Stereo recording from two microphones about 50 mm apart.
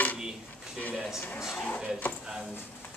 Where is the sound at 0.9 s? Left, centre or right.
Centre.